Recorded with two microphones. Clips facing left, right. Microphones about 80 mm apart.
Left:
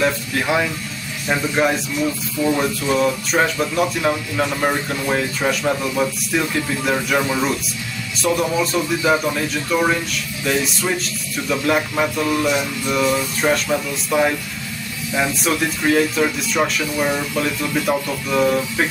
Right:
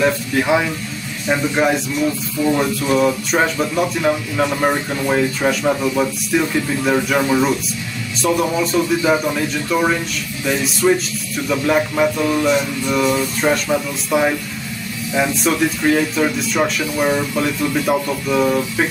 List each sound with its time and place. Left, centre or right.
0.0 s speech: centre